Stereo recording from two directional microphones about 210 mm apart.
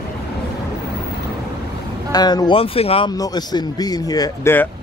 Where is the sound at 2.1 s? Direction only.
20° left (ahead or behind).